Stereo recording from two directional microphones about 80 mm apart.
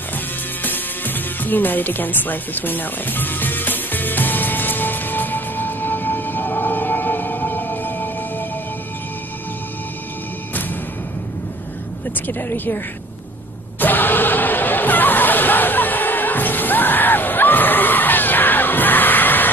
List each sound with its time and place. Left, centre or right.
0.1 s music: left
12.3 s speech: left
13.7 s a sound: left